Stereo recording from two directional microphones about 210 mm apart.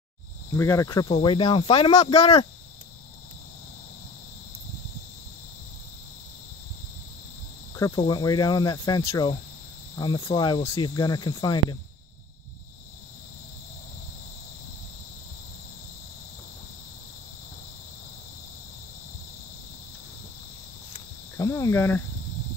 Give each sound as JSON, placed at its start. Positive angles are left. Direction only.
{"t": 0.6, "sound": "cricket", "side_deg": 15}
{"t": 2.1, "sound": "speech", "side_deg": 30}
{"t": 7.7, "sound": "cricket", "side_deg": 15}
{"t": 21.4, "sound": "cricket", "side_deg": 15}